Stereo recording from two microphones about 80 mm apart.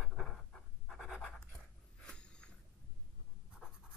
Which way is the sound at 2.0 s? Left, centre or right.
Centre.